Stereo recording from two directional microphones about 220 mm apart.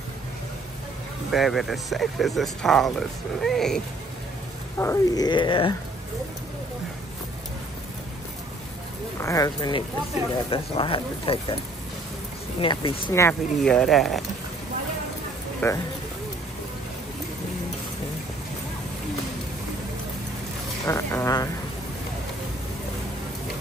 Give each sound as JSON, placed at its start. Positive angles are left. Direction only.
{"t": 1.3, "sound": "speech", "side_deg": 0}
{"t": 4.7, "sound": "speech", "side_deg": 15}
{"t": 9.2, "sound": "speech", "side_deg": 15}
{"t": 12.5, "sound": "speech", "side_deg": 25}
{"t": 13.1, "sound": "speech", "side_deg": 10}
{"t": 15.6, "sound": "speech", "side_deg": 10}
{"t": 20.8, "sound": "speech", "side_deg": 15}